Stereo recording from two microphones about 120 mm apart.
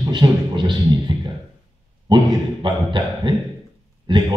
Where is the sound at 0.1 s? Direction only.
40° right (ahead or behind).